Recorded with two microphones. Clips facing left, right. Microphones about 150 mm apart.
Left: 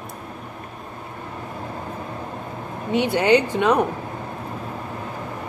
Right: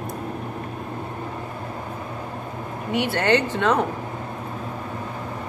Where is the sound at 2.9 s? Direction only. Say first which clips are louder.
Left 3 dB; 15° left (ahead or behind).